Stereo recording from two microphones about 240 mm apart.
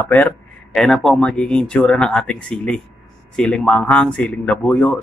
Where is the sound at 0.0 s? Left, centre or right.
Centre.